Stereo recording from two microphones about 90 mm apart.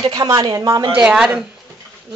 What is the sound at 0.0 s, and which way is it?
Speech, 50° right (ahead or behind).